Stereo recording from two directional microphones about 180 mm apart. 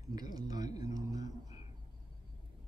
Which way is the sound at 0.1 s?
20° right (ahead or behind).